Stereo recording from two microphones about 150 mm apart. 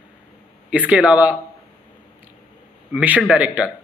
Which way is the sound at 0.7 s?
10° right (ahead or behind).